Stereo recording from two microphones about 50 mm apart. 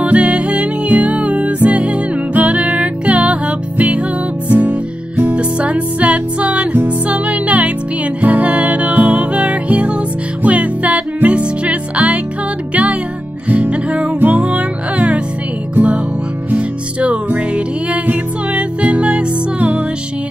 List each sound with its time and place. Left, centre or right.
0.0 s music: right
5.3 s music: right
13.5 s music: right